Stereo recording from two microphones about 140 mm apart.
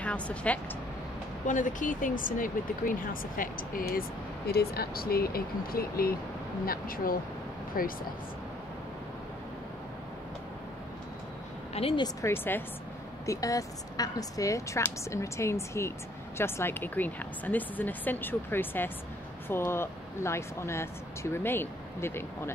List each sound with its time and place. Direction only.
0.0 s speech: 10° left (ahead or behind)
1.5 s speech: 65° left (ahead or behind); by 7.9 s 90° left
11.7 s speech: 45° left (ahead or behind)
12.0 s a woman's voice: 20° left (ahead or behind)